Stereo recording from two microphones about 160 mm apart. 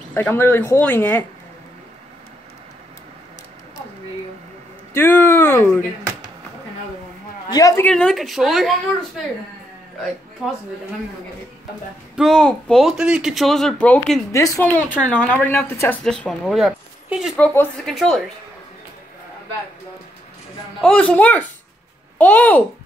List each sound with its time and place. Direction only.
0.1 s a woman's voice: 15° left (ahead or behind)
4.9 s speech: 15° left (ahead or behind)
7.5 s a woman's voice: 20° left (ahead or behind)
7.8 s speech: 5° left (ahead or behind)
12.2 s speech: 5° left (ahead or behind)
14.3 s a woman's voice: 20° left (ahead or behind); by 18.2 s centre (ahead or behind)
20.8 s a woman's voice: 5° left (ahead or behind)